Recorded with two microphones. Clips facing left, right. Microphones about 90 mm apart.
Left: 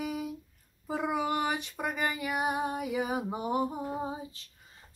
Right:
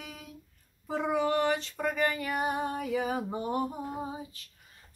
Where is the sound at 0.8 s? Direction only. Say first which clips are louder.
Right 2 dB; 5° left (ahead or behind); by 4.5 s 25° left (ahead or behind).